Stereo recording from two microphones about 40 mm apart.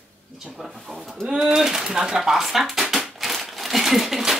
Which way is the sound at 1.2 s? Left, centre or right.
Centre.